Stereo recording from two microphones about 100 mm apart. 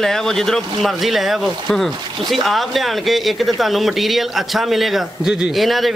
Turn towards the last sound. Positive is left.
turn(degrees=0)  # may be behind; listen again after turning